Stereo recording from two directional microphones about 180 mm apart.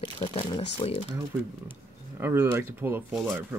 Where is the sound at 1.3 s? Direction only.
15° right (ahead or behind).